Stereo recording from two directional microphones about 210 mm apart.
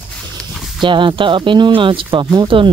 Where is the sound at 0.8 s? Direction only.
25° right (ahead or behind).